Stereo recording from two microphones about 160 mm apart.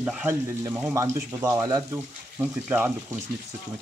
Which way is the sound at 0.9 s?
20° right (ahead or behind).